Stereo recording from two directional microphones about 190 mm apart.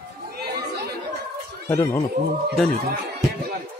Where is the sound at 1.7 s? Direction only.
15° left (ahead or behind).